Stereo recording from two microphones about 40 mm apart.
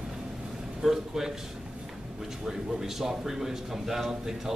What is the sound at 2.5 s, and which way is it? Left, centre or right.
A man's voice, centre.